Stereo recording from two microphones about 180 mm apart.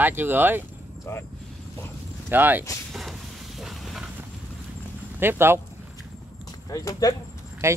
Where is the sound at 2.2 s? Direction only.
10° right (ahead or behind).